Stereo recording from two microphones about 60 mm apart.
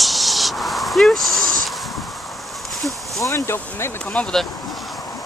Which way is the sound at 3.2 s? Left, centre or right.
Left.